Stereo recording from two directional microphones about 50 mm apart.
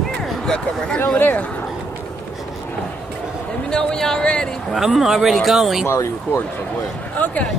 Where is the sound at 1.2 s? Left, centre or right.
Left.